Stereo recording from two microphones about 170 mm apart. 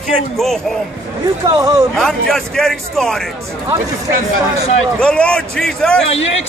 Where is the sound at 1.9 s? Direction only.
Centre (ahead or behind).